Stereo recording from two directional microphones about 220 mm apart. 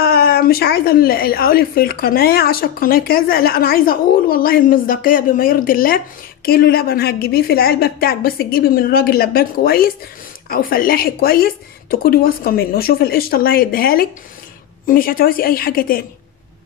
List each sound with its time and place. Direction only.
0.0 s a woman's voice: 45° left (ahead or behind)